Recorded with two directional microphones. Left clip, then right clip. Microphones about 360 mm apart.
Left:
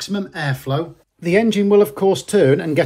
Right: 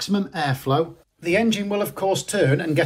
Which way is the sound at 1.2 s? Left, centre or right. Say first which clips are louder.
Left 5 dB; left.